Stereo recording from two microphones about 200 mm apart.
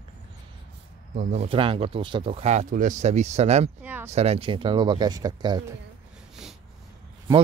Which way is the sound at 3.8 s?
10° right (ahead or behind).